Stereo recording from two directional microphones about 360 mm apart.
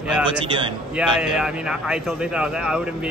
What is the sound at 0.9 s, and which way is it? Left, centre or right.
Speech, centre.